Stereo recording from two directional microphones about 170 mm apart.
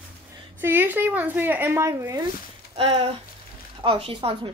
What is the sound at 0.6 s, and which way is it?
Speech, 10° right (ahead or behind).